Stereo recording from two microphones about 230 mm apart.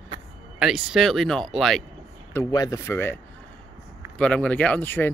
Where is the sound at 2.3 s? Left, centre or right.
Centre.